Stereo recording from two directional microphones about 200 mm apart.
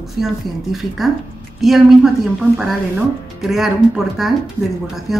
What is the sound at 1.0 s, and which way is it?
Speech, centre (ahead or behind).